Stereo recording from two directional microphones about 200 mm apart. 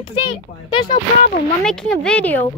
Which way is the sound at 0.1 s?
25° left (ahead or behind).